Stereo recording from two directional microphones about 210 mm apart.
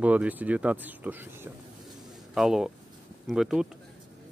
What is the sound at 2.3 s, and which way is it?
Speech, centre (ahead or behind).